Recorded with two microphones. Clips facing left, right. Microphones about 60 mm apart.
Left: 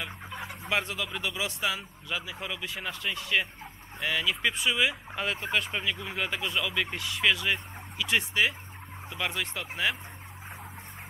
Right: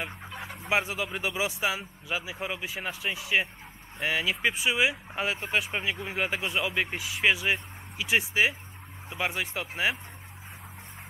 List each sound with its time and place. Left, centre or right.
0.3 s chicken: centre
0.7 s speech: centre
2.9 s speech: centre
5.7 s speech: centre
7.0 s speech: centre